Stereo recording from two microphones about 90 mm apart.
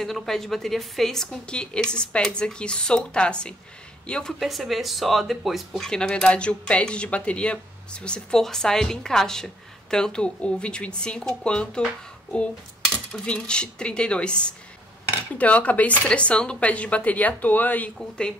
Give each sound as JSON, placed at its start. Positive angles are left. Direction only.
{"t": 0.0, "sound": "speech", "side_deg": 5}
{"t": 12.9, "sound": "speech", "side_deg": 10}